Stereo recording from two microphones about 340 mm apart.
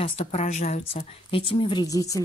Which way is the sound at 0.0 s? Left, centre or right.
Centre.